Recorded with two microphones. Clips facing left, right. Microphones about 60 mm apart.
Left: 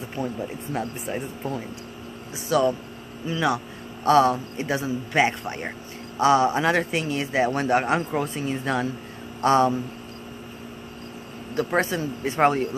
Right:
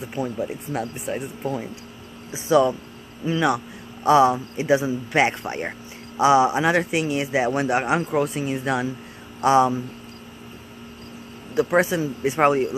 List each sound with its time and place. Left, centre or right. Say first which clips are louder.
0.1 s a man's voice: right 3 dB; centre
2.3 s speech: right 4 dB; right
3.3 s a man's voice: right 3 dB; centre
11.5 s a man's voice: right 4 dB; centre